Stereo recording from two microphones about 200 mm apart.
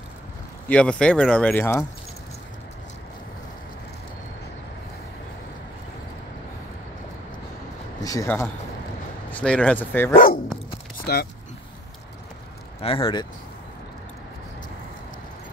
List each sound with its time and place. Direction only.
0.7 s speech: 5° left (ahead or behind)
8.0 s speech: 15° left (ahead or behind)
10.1 s speech: 45° left (ahead or behind)
12.8 s speech: 25° left (ahead or behind)